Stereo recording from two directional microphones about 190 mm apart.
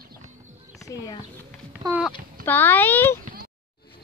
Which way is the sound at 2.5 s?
10° left (ahead or behind).